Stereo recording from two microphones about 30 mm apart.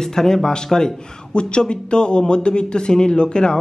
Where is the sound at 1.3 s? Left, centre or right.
Left.